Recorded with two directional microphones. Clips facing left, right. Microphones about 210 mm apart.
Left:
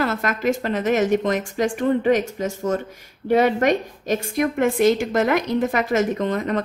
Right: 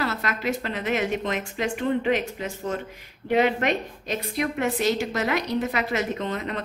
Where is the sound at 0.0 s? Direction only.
50° left (ahead or behind).